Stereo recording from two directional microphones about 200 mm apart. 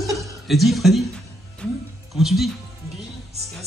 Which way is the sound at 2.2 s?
Centre (ahead or behind).